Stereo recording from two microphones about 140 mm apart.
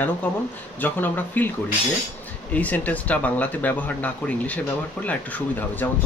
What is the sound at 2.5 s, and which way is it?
Speech, 10° left (ahead or behind).